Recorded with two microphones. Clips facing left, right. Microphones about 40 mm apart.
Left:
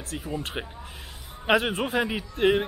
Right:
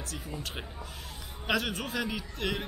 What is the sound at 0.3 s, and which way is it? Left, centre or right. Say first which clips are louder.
A man's voice: left 10 dB; left.